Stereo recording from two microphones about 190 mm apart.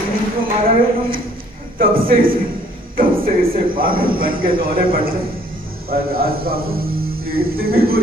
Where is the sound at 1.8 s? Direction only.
50° right (ahead or behind).